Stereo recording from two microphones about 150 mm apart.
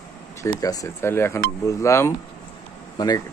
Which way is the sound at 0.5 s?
25° left (ahead or behind).